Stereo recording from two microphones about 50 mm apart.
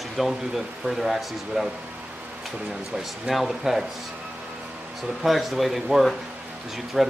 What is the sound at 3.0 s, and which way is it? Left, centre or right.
Speech, centre.